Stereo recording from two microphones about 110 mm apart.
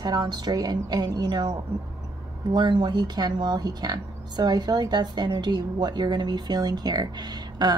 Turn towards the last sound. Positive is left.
turn(degrees=-40)  # may be behind; listen again after turning